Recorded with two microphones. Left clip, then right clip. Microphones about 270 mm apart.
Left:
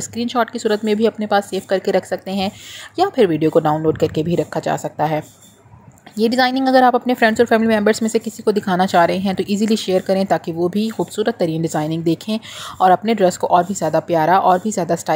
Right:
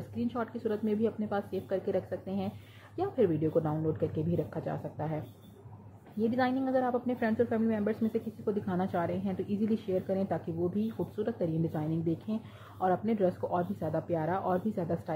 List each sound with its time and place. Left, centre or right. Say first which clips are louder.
0.1 s a woman's voice: left 16 dB; left